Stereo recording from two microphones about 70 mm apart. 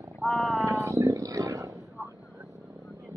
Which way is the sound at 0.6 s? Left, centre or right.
Right.